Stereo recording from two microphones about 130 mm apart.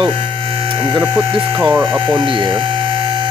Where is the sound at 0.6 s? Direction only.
40° right (ahead or behind).